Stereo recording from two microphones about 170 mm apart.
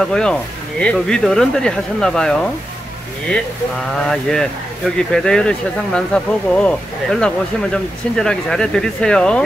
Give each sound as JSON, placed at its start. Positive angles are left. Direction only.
{"t": 0.0, "sound": "speech", "side_deg": 5}
{"t": 3.9, "sound": "speech", "side_deg": 5}